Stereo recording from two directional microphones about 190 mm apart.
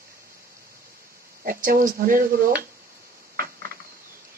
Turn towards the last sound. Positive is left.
turn(degrees=-50)  # may be behind; listen again after turning